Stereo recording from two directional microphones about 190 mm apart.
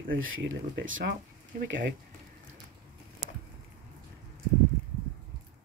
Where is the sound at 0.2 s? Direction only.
90° right.